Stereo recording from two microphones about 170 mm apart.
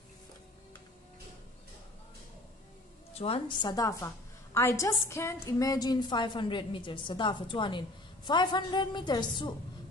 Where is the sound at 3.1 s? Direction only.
35° left (ahead or behind).